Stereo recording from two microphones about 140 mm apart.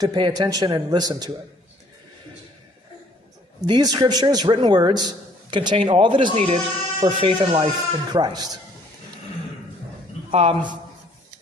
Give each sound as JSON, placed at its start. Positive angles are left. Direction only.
{"t": 0.0, "sound": "a man's voice", "side_deg": -30}
{"t": 3.6, "sound": "a man's voice", "side_deg": -30}
{"t": 6.3, "sound": "a man's voice", "side_deg": -45}
{"t": 10.3, "sound": "a man's voice", "side_deg": -40}